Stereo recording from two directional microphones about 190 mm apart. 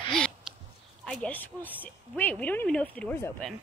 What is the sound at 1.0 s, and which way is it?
Speech, 5° left (ahead or behind).